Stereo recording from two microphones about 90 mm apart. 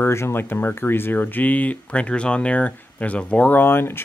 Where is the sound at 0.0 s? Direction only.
25° left (ahead or behind).